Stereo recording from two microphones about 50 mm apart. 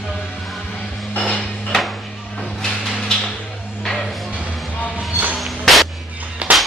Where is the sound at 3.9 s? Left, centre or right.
Centre.